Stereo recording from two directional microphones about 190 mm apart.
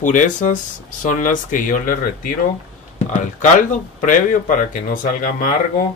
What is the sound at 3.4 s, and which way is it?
A man's voice, 45° left (ahead or behind).